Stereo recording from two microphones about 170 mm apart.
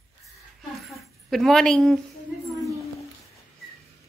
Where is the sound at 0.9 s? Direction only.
Centre (ahead or behind).